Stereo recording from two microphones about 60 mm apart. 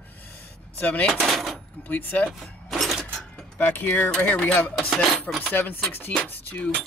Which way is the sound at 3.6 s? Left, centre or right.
Left.